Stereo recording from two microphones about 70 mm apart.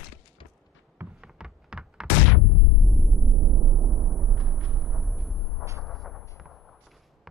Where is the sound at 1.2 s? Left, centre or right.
Centre.